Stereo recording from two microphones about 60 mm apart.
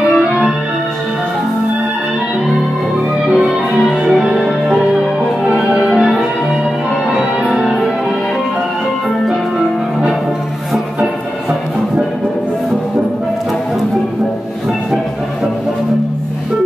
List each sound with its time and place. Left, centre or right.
0.2 s music: centre
3.7 s music: centre
7.5 s music: centre